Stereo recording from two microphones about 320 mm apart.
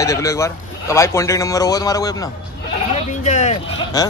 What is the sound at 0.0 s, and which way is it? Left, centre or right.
A man's voice, centre.